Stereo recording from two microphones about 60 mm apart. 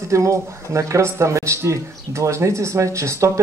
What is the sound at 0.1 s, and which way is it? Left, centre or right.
Speech, right.